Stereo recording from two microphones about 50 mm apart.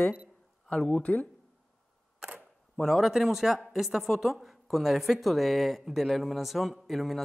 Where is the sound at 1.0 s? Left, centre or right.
Left.